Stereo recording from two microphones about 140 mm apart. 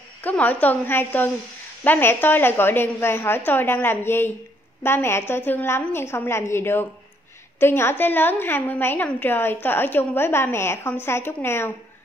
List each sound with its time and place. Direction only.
0.2 s a woman's voice: 10° left (ahead or behind)